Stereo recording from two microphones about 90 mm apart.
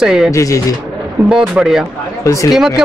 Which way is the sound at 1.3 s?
5° right (ahead or behind).